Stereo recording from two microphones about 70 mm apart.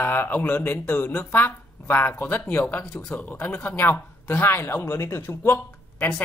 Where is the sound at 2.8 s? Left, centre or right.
Centre.